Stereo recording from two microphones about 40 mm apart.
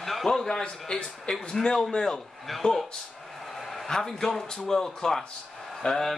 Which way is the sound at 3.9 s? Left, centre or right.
Centre.